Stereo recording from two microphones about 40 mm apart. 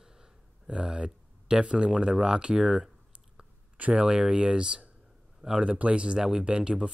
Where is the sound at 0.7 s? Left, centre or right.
Right.